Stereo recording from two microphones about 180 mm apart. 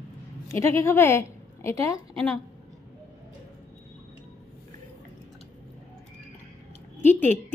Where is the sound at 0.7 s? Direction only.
15° left (ahead or behind).